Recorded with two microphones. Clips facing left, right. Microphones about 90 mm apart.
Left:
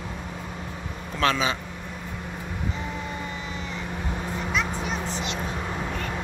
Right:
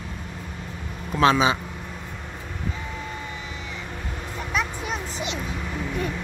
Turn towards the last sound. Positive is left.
turn(degrees=-5)  # may be behind; listen again after turning